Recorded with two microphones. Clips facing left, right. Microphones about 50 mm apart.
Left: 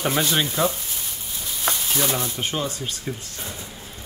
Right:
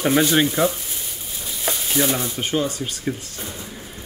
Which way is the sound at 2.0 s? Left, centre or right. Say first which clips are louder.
Right 6 dB; right.